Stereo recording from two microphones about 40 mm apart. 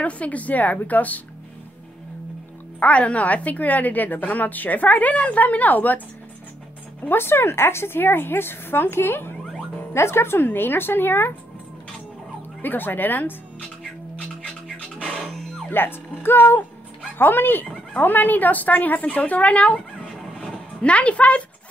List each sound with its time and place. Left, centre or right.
0.0 s a woman's voice: left
2.8 s a woman's voice: left
7.0 s a woman's voice: left
9.9 s speech: left
12.6 s a woman's voice: left
14.7 s music: left
15.2 s music: centre
15.7 s speech: left
17.9 s a woman's voice: left